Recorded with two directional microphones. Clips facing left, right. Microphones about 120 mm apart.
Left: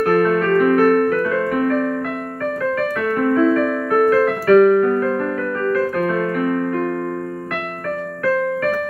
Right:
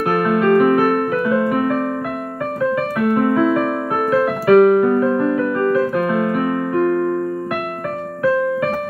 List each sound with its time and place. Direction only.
0.0 s music: 10° right (ahead or behind)